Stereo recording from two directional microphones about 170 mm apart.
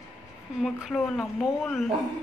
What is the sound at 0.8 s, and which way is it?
A woman's voice, centre (ahead or behind).